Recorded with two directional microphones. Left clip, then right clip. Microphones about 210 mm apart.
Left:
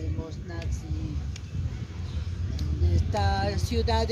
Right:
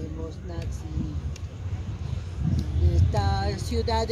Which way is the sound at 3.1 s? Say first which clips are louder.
Left 2 dB; 20° left (ahead or behind).